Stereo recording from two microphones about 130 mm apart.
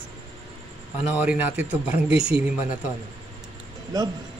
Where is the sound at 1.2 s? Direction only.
10° right (ahead or behind).